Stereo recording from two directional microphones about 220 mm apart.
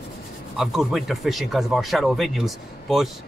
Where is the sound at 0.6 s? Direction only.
Centre (ahead or behind).